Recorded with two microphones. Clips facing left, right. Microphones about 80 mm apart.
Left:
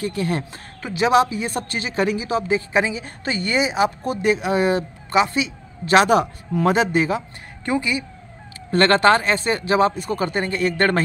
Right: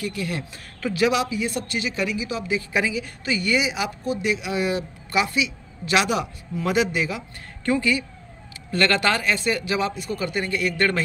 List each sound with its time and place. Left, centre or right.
0.0 s speech: left
0.8 s speech: left
1.1 s speech: left
4.0 s speech: left
7.6 s speech: centre
8.7 s speech: left